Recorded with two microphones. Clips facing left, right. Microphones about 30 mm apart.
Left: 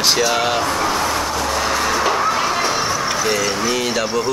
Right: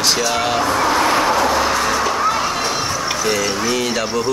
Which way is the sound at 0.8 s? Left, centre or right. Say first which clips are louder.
Right 3 dB; centre.